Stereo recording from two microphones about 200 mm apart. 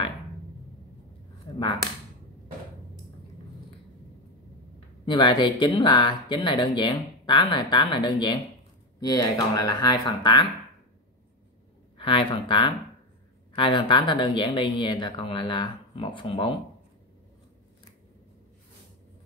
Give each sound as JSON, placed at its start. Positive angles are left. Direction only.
{"t": 5.0, "sound": "speech", "side_deg": 25}
{"t": 12.0, "sound": "speech", "side_deg": 25}